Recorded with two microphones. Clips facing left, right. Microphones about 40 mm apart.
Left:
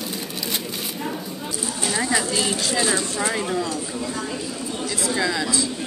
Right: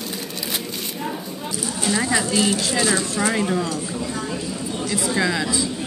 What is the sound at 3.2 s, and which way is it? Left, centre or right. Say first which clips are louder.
Speech: right 3 dB; centre.